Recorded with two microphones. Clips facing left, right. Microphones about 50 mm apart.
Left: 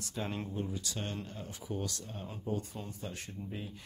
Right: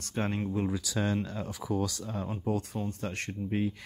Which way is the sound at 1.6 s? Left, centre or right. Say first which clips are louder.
Right 8 dB; right.